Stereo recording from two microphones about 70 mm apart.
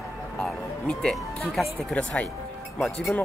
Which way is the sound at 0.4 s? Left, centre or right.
Centre.